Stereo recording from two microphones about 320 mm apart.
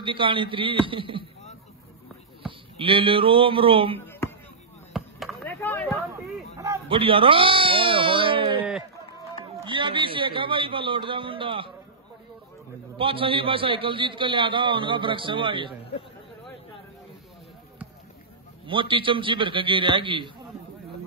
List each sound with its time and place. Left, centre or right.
0.0 s a man's voice: centre
2.4 s speech: centre
4.0 s a sound: centre
4.9 s chop: centre
6.6 s sheep: centre
9.7 s a man's voice: centre
12.9 s a man's voice: centre
18.7 s a man's voice: centre